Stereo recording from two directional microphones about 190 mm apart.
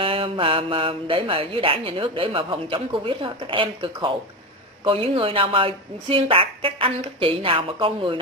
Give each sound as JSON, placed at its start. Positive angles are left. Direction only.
{"t": 0.0, "sound": "speech", "side_deg": -30}